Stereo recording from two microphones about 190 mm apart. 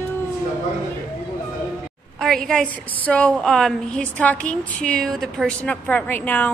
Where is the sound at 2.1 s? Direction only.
Centre (ahead or behind).